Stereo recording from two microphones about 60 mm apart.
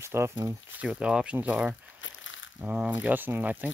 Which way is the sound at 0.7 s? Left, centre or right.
Centre.